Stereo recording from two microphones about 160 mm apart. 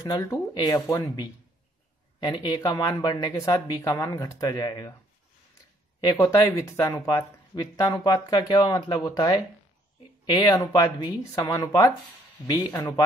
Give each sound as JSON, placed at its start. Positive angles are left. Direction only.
{"t": 0.0, "sound": "speech", "side_deg": 20}
{"t": 6.1, "sound": "speech", "side_deg": 20}